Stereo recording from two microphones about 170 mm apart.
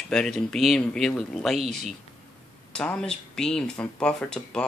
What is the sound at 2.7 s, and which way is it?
A man's voice, 5° left (ahead or behind).